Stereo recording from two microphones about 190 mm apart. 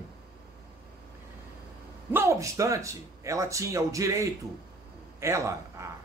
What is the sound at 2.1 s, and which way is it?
A man's voice, 15° right (ahead or behind).